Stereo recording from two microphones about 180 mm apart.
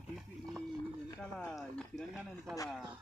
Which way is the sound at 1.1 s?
10° left (ahead or behind).